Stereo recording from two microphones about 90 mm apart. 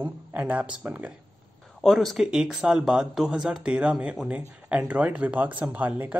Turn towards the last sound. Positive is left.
turn(degrees=-20)  # may be behind; listen again after turning